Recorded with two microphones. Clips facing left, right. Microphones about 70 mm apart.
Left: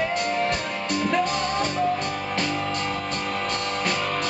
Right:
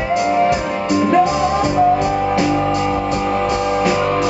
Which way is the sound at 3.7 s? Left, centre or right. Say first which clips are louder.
Right 10 dB; centre.